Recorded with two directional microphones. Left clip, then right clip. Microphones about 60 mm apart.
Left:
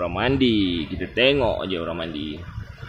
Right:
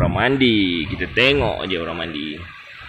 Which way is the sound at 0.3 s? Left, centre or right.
Centre.